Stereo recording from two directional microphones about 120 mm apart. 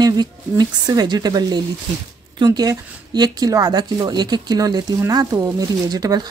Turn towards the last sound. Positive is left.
turn(degrees=-35)  # may be behind; listen again after turning